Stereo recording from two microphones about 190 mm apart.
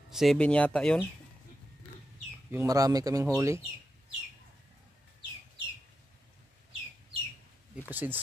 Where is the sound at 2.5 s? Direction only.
15° right (ahead or behind).